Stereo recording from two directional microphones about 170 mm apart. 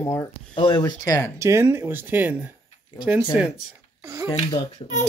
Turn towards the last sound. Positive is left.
turn(degrees=25)  # may be behind; listen again after turning